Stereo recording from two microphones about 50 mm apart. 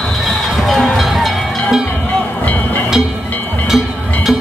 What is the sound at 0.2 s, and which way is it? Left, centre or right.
Music, centre.